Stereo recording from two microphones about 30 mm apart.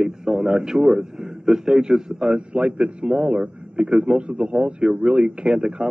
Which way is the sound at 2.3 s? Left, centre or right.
Right.